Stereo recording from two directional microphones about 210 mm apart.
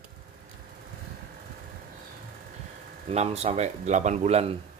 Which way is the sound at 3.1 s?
30° right (ahead or behind).